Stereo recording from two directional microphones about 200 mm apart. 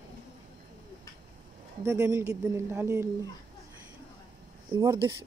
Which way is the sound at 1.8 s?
15° right (ahead or behind).